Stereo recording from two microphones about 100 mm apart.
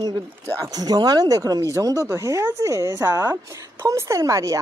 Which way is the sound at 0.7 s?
40° right (ahead or behind).